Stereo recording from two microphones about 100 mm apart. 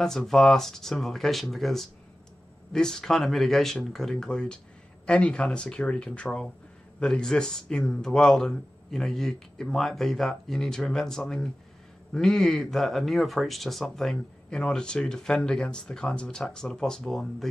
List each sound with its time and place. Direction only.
0.0 s speech: 5° left (ahead or behind)